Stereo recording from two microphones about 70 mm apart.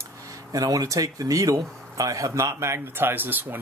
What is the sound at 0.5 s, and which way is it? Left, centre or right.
Speech, right.